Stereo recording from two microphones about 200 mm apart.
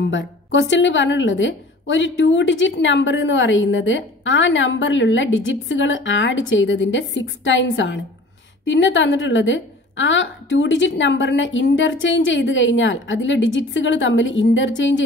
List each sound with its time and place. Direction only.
0.0 s a woman's voice: 65° left (ahead or behind)